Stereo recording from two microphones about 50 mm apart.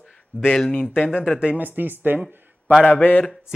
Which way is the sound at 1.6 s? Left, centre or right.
Right.